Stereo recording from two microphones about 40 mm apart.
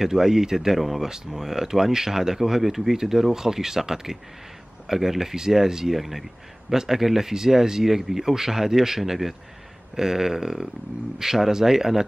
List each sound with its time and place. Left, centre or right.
0.0 s speech: centre